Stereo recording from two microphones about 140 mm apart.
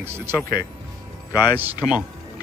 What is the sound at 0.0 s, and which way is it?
Speech, 15° right (ahead or behind).